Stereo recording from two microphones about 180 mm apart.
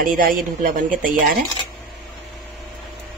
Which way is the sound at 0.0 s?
50° right (ahead or behind).